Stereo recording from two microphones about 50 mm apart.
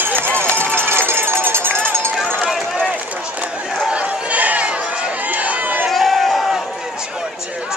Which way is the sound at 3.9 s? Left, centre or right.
Right.